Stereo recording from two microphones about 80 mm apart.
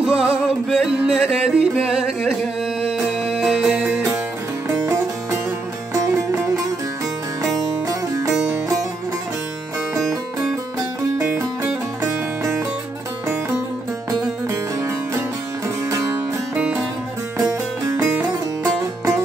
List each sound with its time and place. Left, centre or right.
0.0 s music: centre
7.4 s music: right
12.0 s music: right
15.9 s music: right
17.5 s music: right